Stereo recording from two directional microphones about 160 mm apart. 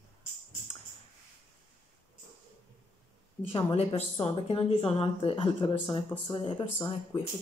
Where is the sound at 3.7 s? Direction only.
40° left (ahead or behind).